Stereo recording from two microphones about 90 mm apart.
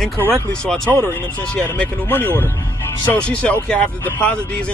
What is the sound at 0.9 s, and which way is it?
Speech, 30° left (ahead or behind).